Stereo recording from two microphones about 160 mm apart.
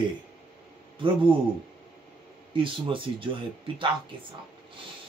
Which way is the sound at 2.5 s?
30° right (ahead or behind).